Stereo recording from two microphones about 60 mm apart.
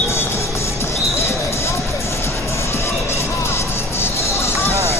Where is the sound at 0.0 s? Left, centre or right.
Left.